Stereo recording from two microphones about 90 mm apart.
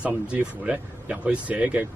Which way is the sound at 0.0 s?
10° right (ahead or behind).